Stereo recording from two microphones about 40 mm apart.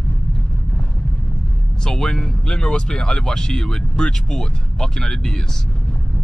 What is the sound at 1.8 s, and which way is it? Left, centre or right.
Speech, centre.